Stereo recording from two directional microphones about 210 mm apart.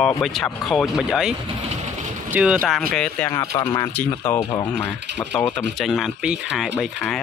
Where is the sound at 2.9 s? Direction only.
5° left (ahead or behind).